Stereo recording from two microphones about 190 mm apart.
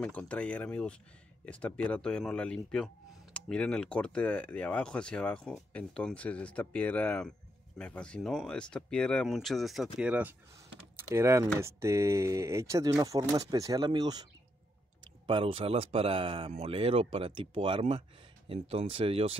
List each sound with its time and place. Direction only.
0.0 s speech: 5° left (ahead or behind); by 14.2 s 20° right (ahead or behind)
15.2 s speech: 25° right (ahead or behind)